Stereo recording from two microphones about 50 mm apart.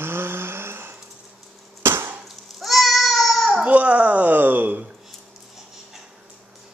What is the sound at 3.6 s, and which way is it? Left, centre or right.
Speech, right.